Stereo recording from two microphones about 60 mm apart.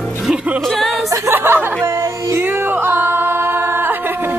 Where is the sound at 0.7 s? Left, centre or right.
Centre.